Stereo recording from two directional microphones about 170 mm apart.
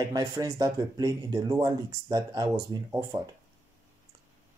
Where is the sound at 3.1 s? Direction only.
35° right (ahead or behind).